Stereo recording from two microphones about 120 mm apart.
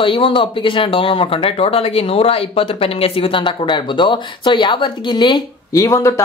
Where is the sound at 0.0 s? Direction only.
45° left (ahead or behind).